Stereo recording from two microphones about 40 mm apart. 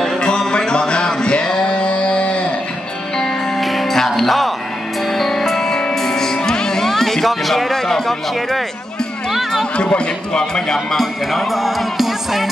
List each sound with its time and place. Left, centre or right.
0.2 s music: left
1.6 s carnatic music: left
3.6 s music: centre
6.9 s speech: centre
9.9 s a man's voice: centre